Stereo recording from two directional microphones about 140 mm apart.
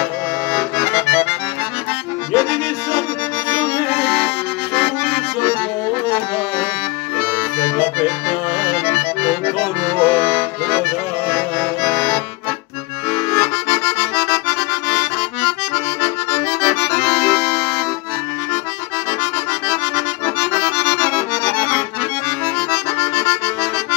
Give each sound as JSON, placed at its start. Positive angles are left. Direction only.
{"t": 0.5, "sound": "accordion", "side_deg": 10}
{"t": 2.3, "sound": "music", "side_deg": 10}
{"t": 3.4, "sound": "accordion", "side_deg": 15}
{"t": 7.5, "sound": "accordion", "side_deg": 35}
{"t": 9.9, "sound": "accordion", "side_deg": 10}
{"t": 13.3, "sound": "accordion", "side_deg": 15}
{"t": 16.6, "sound": "accordion", "side_deg": 15}
{"t": 20.3, "sound": "accordion", "side_deg": 10}
{"t": 22.6, "sound": "accordion", "side_deg": 15}